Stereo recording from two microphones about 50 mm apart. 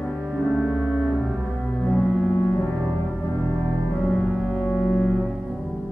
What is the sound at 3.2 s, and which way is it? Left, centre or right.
Music, left.